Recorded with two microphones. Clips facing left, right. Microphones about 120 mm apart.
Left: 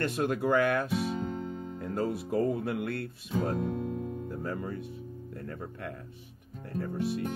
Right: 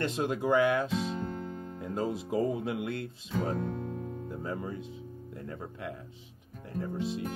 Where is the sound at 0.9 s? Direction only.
15° left (ahead or behind).